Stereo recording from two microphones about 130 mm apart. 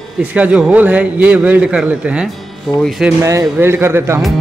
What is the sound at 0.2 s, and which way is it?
A man's voice, 10° right (ahead or behind).